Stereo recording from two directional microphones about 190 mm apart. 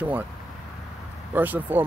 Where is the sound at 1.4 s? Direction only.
10° right (ahead or behind).